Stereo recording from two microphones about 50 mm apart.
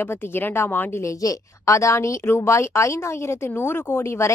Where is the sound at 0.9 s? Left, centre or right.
Left.